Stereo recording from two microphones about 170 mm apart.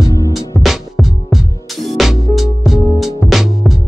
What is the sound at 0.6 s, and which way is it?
Music, centre (ahead or behind).